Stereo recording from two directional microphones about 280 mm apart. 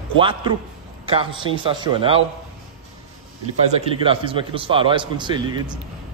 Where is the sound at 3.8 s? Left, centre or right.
Centre.